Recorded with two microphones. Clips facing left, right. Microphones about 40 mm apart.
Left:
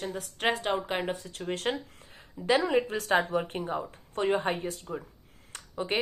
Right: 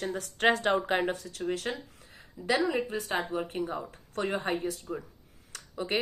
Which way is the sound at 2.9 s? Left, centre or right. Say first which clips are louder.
Left 5 dB; left.